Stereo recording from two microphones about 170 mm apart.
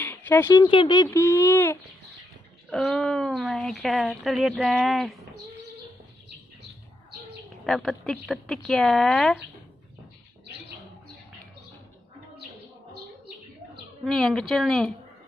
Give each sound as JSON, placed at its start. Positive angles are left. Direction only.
{"t": 0.0, "sound": "a sound", "side_deg": 10}
{"t": 0.7, "sound": "speech", "side_deg": 25}
{"t": 2.7, "sound": "speech", "side_deg": 0}
{"t": 7.6, "sound": "speech", "side_deg": 0}
{"t": 14.0, "sound": "speech", "side_deg": 5}